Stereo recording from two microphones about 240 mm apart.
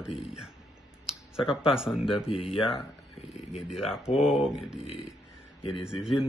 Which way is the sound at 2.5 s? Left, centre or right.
Left.